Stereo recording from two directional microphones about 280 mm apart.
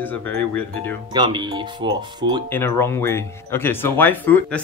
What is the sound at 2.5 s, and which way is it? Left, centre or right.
Speech, centre.